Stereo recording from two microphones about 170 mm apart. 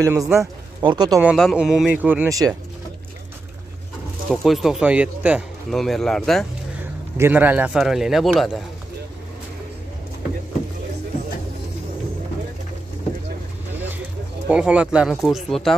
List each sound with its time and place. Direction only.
0.0 s speech: 15° right (ahead or behind)
1.1 s speech: centre (ahead or behind); by 2.5 s 20° right (ahead or behind)
4.3 s speech: centre (ahead or behind)
7.2 s speech: 10° right (ahead or behind)
14.5 s speech: 5° right (ahead or behind)